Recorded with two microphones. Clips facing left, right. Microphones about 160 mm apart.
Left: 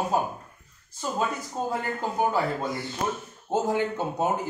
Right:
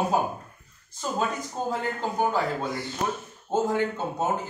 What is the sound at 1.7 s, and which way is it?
A man's voice, 5° left (ahead or behind).